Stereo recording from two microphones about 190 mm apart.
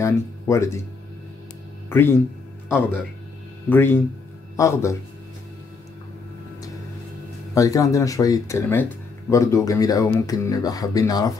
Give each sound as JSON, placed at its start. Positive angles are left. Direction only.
{"t": 0.0, "sound": "speech", "side_deg": 15}
{"t": 1.9, "sound": "speech", "side_deg": 10}
{"t": 7.5, "sound": "speech", "side_deg": 15}